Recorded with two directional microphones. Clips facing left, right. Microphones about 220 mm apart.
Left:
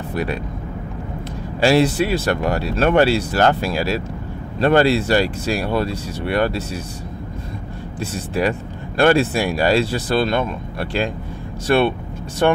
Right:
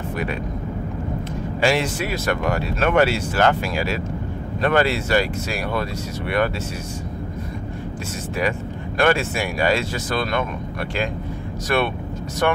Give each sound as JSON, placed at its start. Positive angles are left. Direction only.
{"t": 0.1, "sound": "speech", "side_deg": 35}
{"t": 1.6, "sound": "speech", "side_deg": 35}
{"t": 8.4, "sound": "speech", "side_deg": 30}